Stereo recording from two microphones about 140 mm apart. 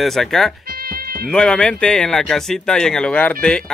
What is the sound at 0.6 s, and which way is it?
Music, 90° right.